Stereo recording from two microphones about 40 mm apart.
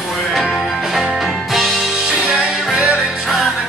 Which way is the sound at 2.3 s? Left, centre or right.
Centre.